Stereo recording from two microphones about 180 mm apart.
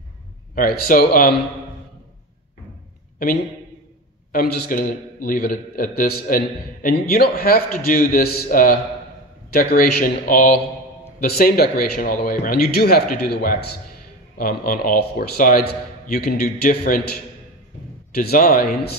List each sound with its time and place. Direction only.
0.6 s a man's voice: 50° left (ahead or behind)
4.3 s a man's voice: 50° left (ahead or behind)
18.1 s a man's voice: 55° left (ahead or behind)